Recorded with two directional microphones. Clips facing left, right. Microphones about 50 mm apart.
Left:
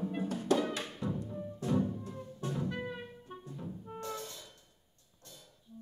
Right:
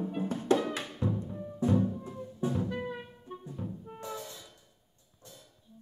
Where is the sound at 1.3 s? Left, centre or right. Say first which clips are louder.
Right 6 dB; centre.